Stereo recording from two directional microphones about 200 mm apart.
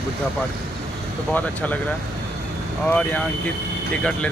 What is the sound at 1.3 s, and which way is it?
Speech, 10° left (ahead or behind).